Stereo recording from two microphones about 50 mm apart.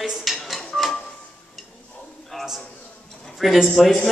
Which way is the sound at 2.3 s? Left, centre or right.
Centre.